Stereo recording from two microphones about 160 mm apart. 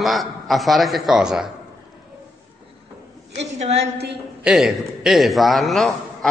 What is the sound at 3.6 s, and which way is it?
Speech, 40° right (ahead or behind).